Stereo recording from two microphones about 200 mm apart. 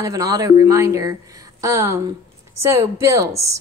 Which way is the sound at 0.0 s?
15° right (ahead or behind).